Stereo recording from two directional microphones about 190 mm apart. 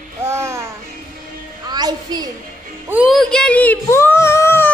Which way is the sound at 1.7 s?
20° right (ahead or behind).